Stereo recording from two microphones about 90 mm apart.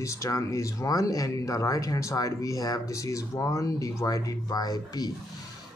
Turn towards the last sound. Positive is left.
turn(degrees=45)  # may be behind; listen again after turning